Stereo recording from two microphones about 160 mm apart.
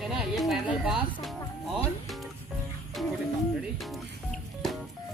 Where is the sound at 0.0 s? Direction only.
5° right (ahead or behind).